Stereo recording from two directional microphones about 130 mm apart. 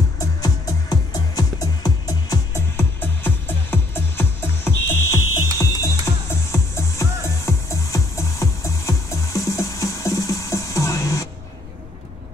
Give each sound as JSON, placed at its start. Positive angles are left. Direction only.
{"t": 0.4, "sound": "music", "side_deg": 25}